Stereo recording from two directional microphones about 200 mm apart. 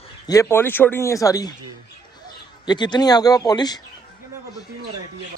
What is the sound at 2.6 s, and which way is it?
Speech, 20° left (ahead or behind).